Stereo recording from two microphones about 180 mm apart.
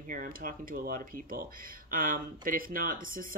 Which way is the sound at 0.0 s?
50° right (ahead or behind).